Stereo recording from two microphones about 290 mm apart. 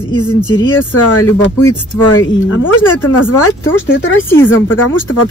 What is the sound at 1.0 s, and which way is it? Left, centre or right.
Speech, left.